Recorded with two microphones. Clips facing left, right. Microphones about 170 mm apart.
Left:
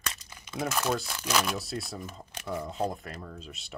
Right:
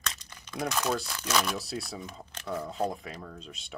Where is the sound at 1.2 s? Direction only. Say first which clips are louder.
Even; 5° left (ahead or behind).